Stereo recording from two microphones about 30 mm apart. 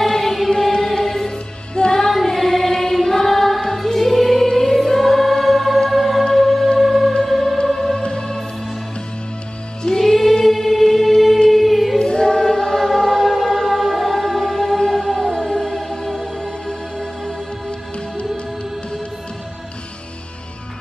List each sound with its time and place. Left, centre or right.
0.0 s music: centre
1.8 s music: left
2.2 s music: centre
3.6 s choir: centre
4.5 s music: centre
8.0 s music: left
9.9 s music: centre
11.5 s choir: centre
12.0 s choir: left
13.7 s music: centre; by 18.4 s left